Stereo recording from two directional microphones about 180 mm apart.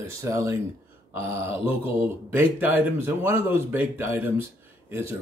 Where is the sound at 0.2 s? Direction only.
15° right (ahead or behind).